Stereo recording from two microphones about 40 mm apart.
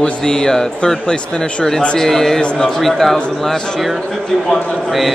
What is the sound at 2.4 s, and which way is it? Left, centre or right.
Speech, left.